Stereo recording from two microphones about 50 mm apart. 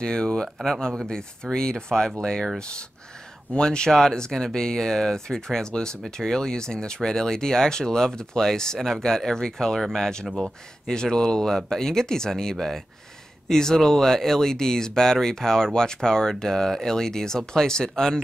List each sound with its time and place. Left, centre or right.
0.0 s speech: centre
3.5 s speech: centre
10.2 s speech: centre
10.9 s speech: centre